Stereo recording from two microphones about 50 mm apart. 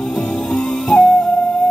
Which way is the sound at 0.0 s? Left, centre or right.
Centre.